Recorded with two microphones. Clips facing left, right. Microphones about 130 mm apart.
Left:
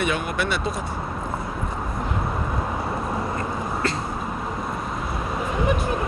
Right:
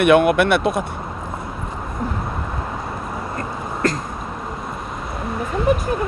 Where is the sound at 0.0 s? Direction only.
65° right (ahead or behind).